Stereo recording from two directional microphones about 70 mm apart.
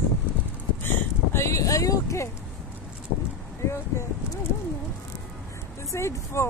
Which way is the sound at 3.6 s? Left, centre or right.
Left.